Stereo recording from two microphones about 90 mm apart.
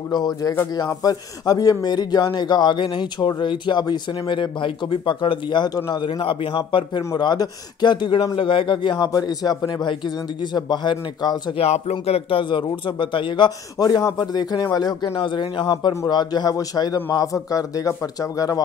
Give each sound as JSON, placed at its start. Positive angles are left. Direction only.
{"t": 0.1, "sound": "a man's voice", "side_deg": 50}
{"t": 7.2, "sound": "a man's voice", "side_deg": 55}
{"t": 8.5, "sound": "a man's voice", "side_deg": 70}
{"t": 12.1, "sound": "a man's voice", "side_deg": 85}
{"t": 13.7, "sound": "a man's voice", "side_deg": 45}